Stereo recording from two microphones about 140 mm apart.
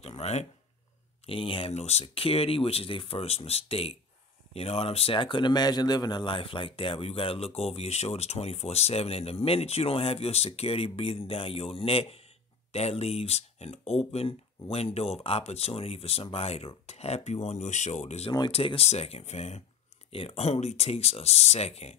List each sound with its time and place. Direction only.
0.2 s speech: 50° left (ahead or behind)
1.2 s speech: 40° left (ahead or behind)